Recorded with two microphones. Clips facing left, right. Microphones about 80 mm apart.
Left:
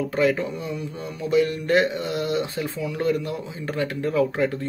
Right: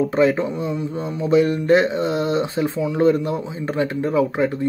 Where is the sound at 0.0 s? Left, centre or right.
Right.